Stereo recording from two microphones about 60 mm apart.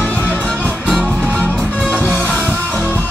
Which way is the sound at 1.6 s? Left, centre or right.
Centre.